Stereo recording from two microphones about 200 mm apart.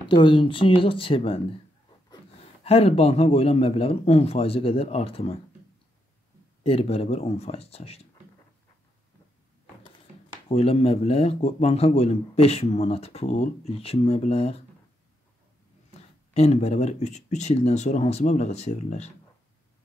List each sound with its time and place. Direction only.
0.1 s speech: 25° left (ahead or behind)
2.6 s a man's voice: 30° left (ahead or behind)
6.6 s a man's voice: 30° left (ahead or behind)
10.5 s a man's voice: 30° left (ahead or behind)
16.3 s a man's voice: 30° left (ahead or behind)